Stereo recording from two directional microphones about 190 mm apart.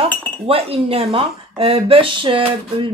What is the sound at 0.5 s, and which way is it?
A woman's voice, 30° right (ahead or behind).